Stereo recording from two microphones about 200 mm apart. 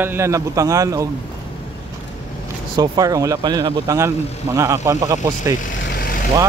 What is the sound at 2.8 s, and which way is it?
A man's voice, 20° right (ahead or behind).